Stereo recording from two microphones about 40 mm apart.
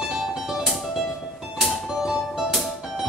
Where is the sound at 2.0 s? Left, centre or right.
Centre.